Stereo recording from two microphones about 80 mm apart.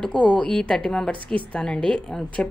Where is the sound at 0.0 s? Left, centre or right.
Centre.